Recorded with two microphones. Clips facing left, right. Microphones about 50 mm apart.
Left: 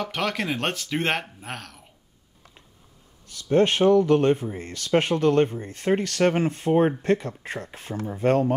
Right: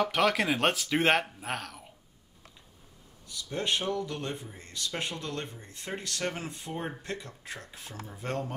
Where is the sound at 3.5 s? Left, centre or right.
Left.